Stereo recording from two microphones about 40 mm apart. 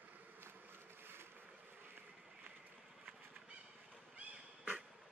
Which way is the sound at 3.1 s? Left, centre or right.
Right.